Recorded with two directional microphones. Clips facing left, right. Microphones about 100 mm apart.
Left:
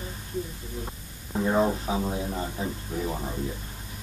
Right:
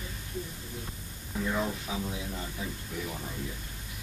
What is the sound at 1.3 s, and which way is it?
Speech, 35° left (ahead or behind).